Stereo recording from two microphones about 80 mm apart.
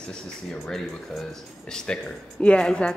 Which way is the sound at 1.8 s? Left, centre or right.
Centre.